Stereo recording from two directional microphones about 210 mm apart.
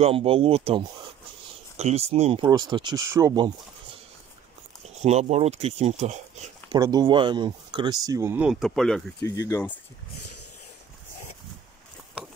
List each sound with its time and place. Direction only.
0.0 s speech: 25° right (ahead or behind)
2.4 s speech: 20° right (ahead or behind)
5.0 s speech: 30° right (ahead or behind)
6.7 s speech: 20° right (ahead or behind); by 9.0 s centre (ahead or behind)
9.2 s speech: 15° left (ahead or behind)